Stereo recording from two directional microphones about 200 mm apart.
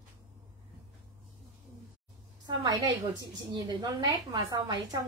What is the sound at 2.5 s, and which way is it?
A woman's voice, 20° right (ahead or behind).